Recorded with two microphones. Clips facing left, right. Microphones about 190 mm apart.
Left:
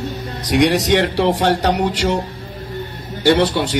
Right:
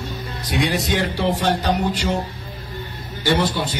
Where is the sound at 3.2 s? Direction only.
85° left.